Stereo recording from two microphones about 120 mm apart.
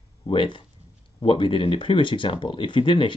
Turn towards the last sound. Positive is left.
turn(degrees=45)  # may be behind; listen again after turning